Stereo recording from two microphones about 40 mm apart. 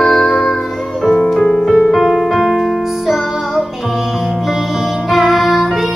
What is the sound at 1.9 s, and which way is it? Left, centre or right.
Piano, centre.